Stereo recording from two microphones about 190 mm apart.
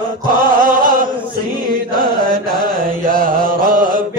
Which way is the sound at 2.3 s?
25° left (ahead or behind).